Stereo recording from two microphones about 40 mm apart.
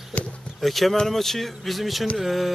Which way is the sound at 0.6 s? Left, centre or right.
Centre.